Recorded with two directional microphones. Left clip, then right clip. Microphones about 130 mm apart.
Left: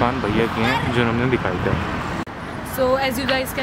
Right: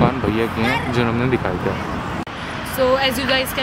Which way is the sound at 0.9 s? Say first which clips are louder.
Even; centre (ahead or behind).